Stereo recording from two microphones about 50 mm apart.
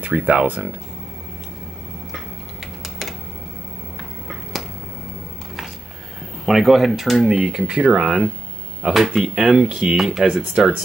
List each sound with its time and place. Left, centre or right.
0.1 s speech: right
2.8 s typing: centre
4.3 s finger snapping: centre
6.4 s speech: centre
9.7 s speech: right
9.9 s speech: centre
10.6 s speech: centre